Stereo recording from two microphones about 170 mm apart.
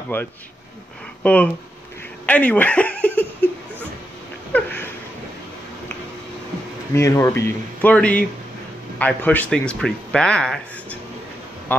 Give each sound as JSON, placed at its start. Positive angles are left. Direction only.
{"t": 0.1, "sound": "speech", "side_deg": 10}
{"t": 4.5, "sound": "a sound", "side_deg": 10}
{"t": 6.9, "sound": "speech", "side_deg": 15}